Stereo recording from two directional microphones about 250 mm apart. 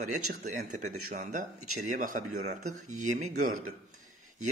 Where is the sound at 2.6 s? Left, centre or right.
Right.